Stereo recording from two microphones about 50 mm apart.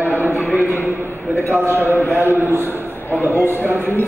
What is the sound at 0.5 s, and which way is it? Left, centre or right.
Speech, left.